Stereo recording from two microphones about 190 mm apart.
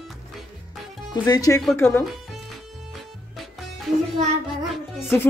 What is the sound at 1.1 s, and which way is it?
Speech, 20° left (ahead or behind).